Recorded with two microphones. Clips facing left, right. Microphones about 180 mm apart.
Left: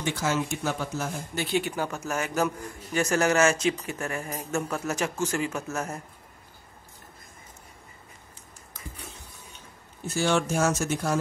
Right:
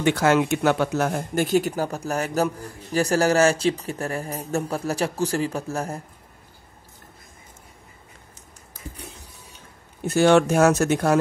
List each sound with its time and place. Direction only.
0.0 s speech: 65° right (ahead or behind)
1.4 s a man's voice: 40° right (ahead or behind)
10.0 s speech: 60° right (ahead or behind)